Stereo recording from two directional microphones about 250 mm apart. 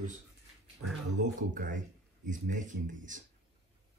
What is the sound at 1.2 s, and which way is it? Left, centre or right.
Speech, right.